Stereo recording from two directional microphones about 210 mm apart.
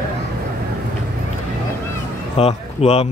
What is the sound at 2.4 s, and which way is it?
Speech, 30° left (ahead or behind).